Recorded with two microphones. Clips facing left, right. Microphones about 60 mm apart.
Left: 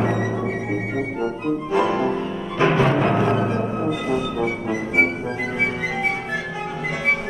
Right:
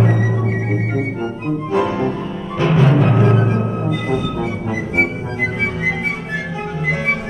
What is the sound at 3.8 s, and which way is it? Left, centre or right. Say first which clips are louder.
Music: right 2 dB; centre.